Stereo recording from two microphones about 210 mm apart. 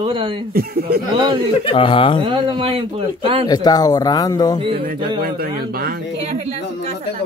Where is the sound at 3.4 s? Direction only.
20° left (ahead or behind).